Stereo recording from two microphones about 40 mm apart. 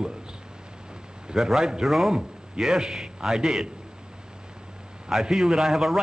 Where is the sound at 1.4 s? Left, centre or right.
Centre.